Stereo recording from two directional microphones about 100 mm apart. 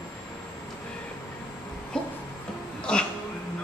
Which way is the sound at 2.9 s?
10° left (ahead or behind).